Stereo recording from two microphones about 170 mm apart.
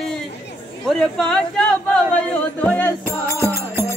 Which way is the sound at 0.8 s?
Centre (ahead or behind).